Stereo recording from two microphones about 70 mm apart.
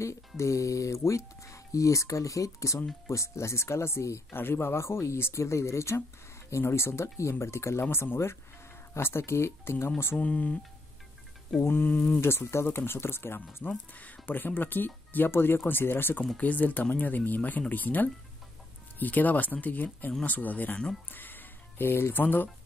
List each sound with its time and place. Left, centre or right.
0.4 s speech: left
10.1 s speech: centre
11.6 s speech: left
12.2 s speech: left